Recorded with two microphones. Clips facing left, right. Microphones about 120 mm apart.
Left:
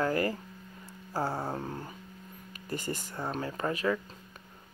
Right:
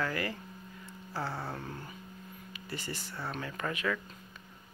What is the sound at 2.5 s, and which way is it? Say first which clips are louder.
Speech: left 6 dB; 45° left (ahead or behind).